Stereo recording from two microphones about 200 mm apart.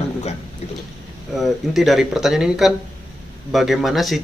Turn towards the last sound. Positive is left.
turn(degrees=0)  # may be behind; listen again after turning